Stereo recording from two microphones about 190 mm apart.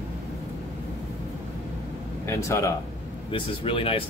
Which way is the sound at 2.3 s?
15° left (ahead or behind).